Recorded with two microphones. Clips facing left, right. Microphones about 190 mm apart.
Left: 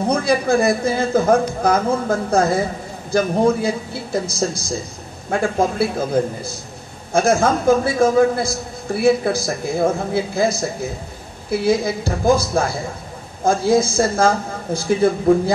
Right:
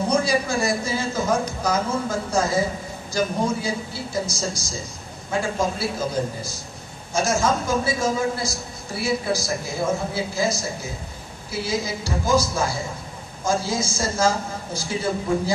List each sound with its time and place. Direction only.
0.1 s a man's voice: 55° left (ahead or behind)